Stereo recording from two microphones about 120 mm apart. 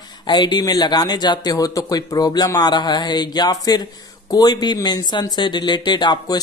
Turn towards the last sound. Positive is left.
turn(degrees=40)  # may be behind; listen again after turning